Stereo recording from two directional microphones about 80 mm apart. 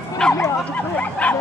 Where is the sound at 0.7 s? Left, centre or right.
Centre.